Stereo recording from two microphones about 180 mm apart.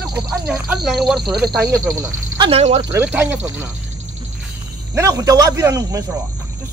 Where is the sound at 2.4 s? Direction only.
35° right (ahead or behind).